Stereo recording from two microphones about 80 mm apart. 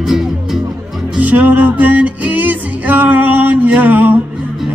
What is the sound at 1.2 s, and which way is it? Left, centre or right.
Music, right.